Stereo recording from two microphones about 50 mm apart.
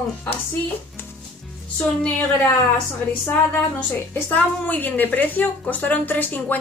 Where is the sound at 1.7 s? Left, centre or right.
Left.